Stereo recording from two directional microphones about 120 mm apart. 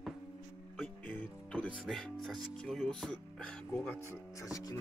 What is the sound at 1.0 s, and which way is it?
Speech, 15° left (ahead or behind).